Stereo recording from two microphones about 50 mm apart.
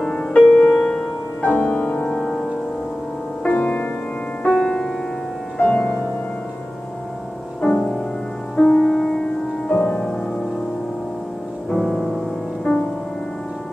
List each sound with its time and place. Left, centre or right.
0.0 s music: centre
3.4 s music: left
4.5 s music: centre
7.6 s music: centre
9.7 s music: left
11.7 s music: centre
12.7 s music: centre